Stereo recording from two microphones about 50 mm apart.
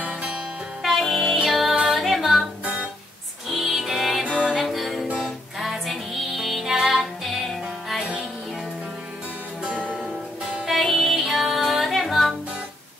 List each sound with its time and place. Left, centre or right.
0.0 s music: right
0.8 s music: centre
3.4 s music: centre
9.6 s music: right
10.8 s music: centre